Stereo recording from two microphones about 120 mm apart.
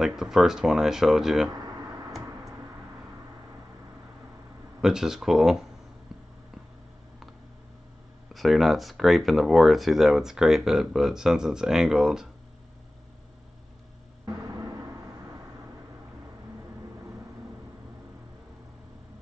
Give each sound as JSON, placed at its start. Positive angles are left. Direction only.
{"t": 0.0, "sound": "speech", "side_deg": -5}
{"t": 4.8, "sound": "speech", "side_deg": -5}
{"t": 8.3, "sound": "speech", "side_deg": 0}
{"t": 14.5, "sound": "timpani", "side_deg": -25}